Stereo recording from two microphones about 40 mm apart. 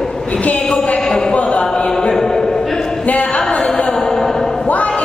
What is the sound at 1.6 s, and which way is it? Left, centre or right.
Chant, centre.